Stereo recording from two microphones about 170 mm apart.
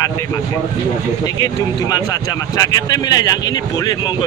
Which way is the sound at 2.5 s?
20° left (ahead or behind).